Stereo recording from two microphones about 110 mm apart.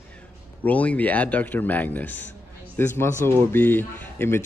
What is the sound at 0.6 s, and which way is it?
Speech, 15° left (ahead or behind).